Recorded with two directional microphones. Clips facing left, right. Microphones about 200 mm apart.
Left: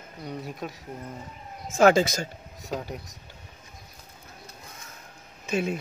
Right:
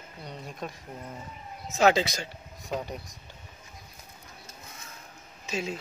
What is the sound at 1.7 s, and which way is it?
Speech, 50° left (ahead or behind).